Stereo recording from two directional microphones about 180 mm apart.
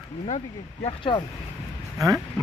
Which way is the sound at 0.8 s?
30° left (ahead or behind).